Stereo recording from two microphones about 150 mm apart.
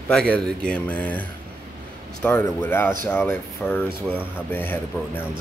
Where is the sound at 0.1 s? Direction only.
5° left (ahead or behind).